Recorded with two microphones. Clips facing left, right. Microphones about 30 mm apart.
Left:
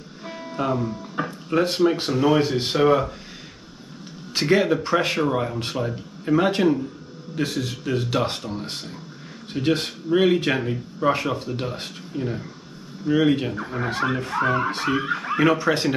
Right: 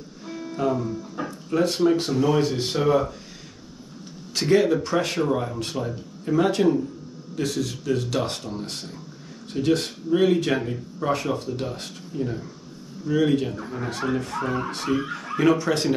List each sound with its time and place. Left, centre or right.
0.2 s speech: left
4.3 s speech: left